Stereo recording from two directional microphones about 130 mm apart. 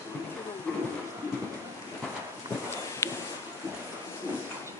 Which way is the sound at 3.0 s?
20° left (ahead or behind).